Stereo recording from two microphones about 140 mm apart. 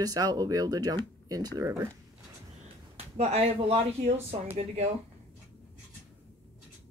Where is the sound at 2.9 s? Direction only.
45° right (ahead or behind).